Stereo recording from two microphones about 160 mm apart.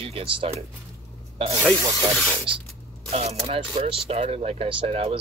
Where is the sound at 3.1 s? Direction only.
40° right (ahead or behind).